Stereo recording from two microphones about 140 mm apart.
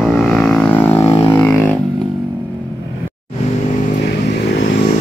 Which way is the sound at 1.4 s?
10° left (ahead or behind).